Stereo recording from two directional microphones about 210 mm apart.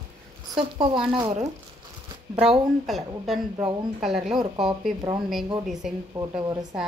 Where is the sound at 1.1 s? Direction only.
25° right (ahead or behind).